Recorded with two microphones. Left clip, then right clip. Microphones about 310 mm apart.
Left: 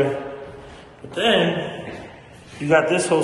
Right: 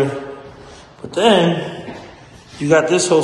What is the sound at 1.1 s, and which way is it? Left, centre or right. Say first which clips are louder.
Speech: right 5 dB; right.